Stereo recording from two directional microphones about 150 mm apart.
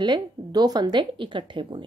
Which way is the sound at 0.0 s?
30° right (ahead or behind).